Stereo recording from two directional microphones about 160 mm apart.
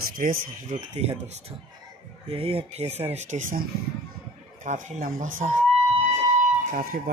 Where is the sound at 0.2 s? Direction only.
55° right (ahead or behind).